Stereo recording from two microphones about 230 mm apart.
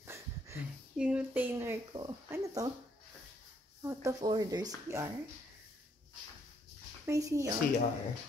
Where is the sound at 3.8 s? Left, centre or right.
Centre.